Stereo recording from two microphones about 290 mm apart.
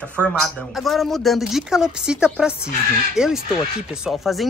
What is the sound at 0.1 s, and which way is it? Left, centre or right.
Speech, centre.